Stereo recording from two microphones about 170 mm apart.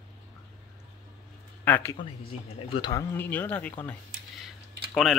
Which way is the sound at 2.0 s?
30° left (ahead or behind).